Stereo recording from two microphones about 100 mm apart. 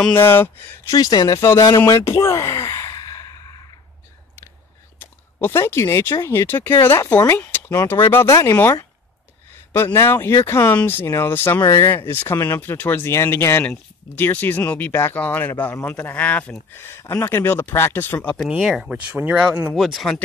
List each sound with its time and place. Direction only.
0.0 s speech: 20° left (ahead or behind)
0.9 s speech: 40° left (ahead or behind)
1.9 s sigh: 30° left (ahead or behind)
4.9 s speech: 20° left (ahead or behind)
9.9 s speech: 25° left (ahead or behind)
18.6 s speech: centre (ahead or behind)
19.1 s speech: 15° right (ahead or behind)
19.7 s speech: centre (ahead or behind)